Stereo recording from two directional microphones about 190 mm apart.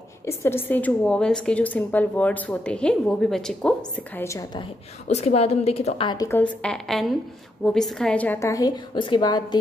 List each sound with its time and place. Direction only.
0.2 s a woman's voice: 15° left (ahead or behind)
5.0 s a woman's voice: 35° left (ahead or behind)